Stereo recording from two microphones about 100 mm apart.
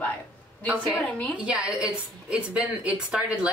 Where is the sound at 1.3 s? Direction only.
10° right (ahead or behind).